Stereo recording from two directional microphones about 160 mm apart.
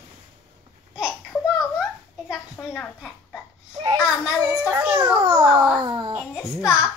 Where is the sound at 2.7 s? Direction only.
5° left (ahead or behind).